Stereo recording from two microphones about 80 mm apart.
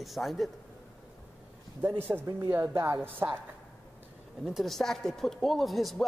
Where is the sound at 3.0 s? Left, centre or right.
Right.